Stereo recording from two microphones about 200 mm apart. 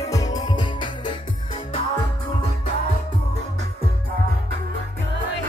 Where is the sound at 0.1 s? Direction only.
20° left (ahead or behind).